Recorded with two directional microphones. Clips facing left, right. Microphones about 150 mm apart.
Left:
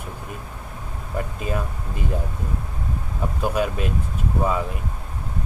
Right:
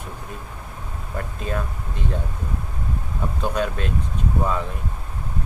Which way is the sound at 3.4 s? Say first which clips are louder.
Left 2 dB; 5° left (ahead or behind).